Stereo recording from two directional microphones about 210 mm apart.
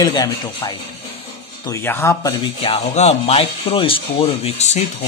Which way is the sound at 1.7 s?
10° left (ahead or behind).